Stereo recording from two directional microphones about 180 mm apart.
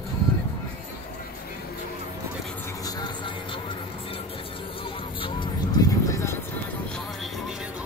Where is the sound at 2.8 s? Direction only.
20° left (ahead or behind).